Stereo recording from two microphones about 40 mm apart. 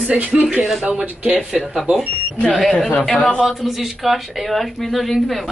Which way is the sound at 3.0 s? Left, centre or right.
Centre.